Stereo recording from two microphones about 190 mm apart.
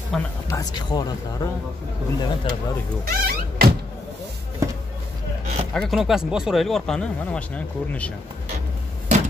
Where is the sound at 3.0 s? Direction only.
55° right (ahead or behind).